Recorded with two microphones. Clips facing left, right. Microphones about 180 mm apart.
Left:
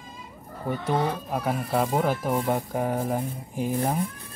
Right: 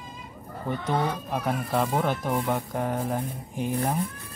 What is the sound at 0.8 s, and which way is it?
Speech, 5° left (ahead or behind).